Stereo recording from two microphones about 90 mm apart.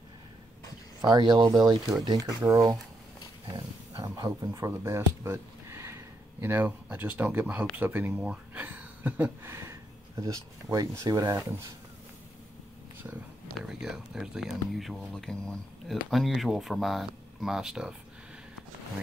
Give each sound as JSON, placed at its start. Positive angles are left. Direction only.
{"t": 1.0, "sound": "speech", "side_deg": -50}
{"t": 3.4, "sound": "a sound", "side_deg": -50}
{"t": 4.1, "sound": "speech", "side_deg": -40}
{"t": 13.7, "sound": "speech", "side_deg": -5}